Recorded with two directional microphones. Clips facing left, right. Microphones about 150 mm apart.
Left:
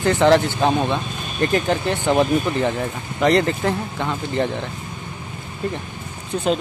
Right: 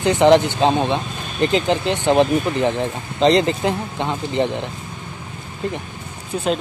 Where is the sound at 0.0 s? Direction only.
20° right (ahead or behind).